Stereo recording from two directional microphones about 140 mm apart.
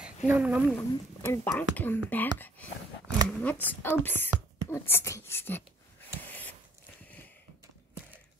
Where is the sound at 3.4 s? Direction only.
15° left (ahead or behind).